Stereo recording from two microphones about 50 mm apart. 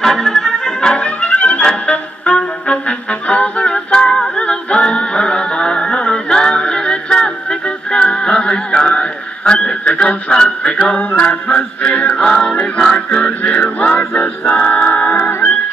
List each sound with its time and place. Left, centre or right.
0.0 s music: centre
10.8 s music: left